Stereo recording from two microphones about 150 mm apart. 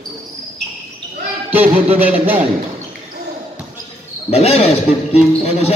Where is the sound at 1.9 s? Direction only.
10° right (ahead or behind).